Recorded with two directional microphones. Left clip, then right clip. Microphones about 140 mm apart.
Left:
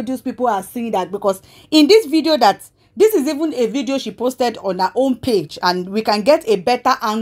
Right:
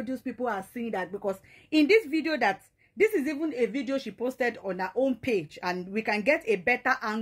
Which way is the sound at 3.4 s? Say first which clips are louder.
Left 10 dB; 25° right (ahead or behind).